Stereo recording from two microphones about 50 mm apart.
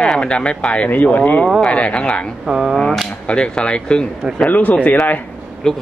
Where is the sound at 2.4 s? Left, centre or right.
Centre.